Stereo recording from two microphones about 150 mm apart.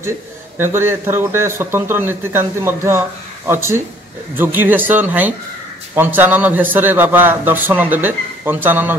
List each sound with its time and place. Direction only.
0.6 s speech: 15° right (ahead or behind)